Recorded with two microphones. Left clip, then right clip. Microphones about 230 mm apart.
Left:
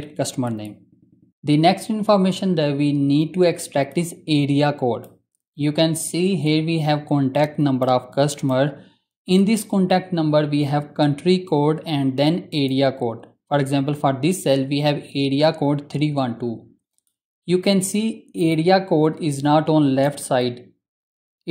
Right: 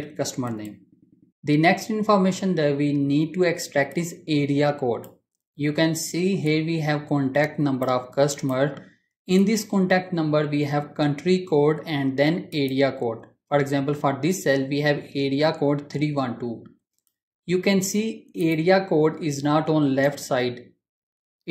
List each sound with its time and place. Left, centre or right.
0.2 s speech: left
17.5 s speech: left